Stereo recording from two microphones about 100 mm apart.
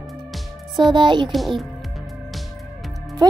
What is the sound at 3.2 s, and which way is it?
Speech, 40° right (ahead or behind).